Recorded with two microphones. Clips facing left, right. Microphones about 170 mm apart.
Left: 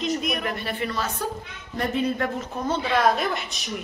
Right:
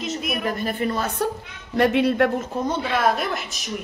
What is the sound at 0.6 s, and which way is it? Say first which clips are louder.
Speech: right 4 dB; 45° right (ahead or behind).